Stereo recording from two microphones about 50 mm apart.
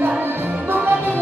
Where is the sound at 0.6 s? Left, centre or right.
Right.